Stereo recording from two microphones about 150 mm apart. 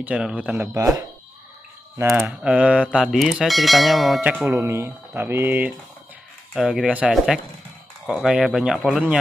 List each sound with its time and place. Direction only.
0.0 s speech: 5° right (ahead or behind)
0.7 s speech: 20° right (ahead or behind)
2.1 s speech: 10° right (ahead or behind)
6.5 s speech: 5° right (ahead or behind)